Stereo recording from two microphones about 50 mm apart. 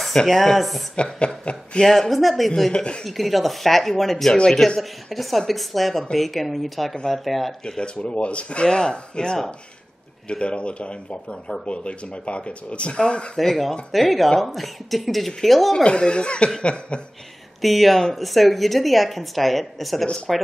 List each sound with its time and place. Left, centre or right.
0.0 s a woman's voice: centre
1.2 s speech: left
1.9 s a woman's voice: centre
2.7 s speech: left
3.1 s a woman's voice: centre
7.6 s speech: centre
13.4 s a woman's voice: centre
15.7 s speech: centre
17.6 s a woman's voice: centre